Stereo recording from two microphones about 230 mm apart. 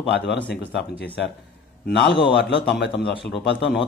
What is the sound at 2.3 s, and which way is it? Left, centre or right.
Speech, left.